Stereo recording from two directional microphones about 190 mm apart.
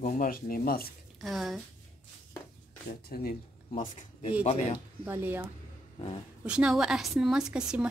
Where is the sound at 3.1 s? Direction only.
50° left (ahead or behind).